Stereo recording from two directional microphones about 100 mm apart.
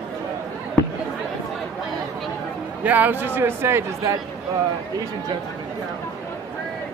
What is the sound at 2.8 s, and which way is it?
Speech, 15° right (ahead or behind).